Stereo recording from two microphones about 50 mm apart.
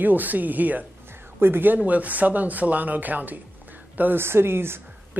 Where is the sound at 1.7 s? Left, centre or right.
Right.